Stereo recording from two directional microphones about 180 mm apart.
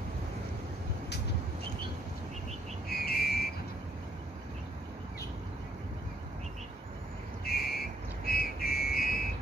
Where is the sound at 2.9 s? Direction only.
60° left (ahead or behind).